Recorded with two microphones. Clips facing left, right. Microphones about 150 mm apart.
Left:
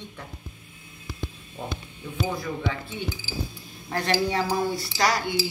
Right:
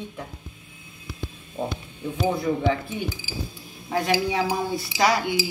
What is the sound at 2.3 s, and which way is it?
A woman's voice, 20° right (ahead or behind).